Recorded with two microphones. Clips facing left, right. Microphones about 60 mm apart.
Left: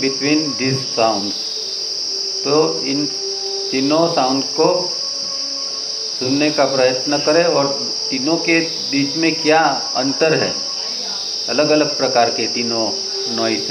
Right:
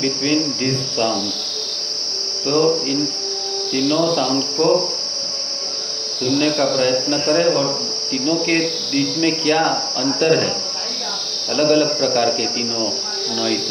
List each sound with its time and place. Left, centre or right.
0.0 s speech: left
2.4 s speech: left
6.2 s speech: left
11.5 s speech: left